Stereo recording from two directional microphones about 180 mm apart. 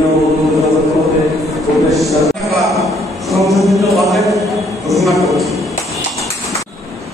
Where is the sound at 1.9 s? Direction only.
Centre (ahead or behind).